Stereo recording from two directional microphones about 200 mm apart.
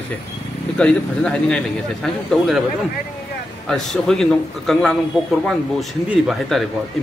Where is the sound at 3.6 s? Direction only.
Centre (ahead or behind).